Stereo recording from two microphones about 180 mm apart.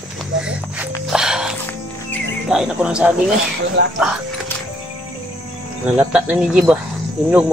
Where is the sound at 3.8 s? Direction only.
75° right (ahead or behind).